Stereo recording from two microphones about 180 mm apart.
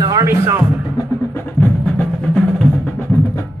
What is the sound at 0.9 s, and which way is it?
Music, 15° left (ahead or behind).